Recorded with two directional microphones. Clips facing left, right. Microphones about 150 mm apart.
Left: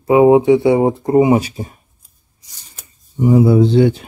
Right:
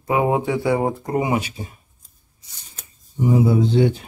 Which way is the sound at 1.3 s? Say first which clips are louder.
Left 7 dB; 35° left (ahead or behind).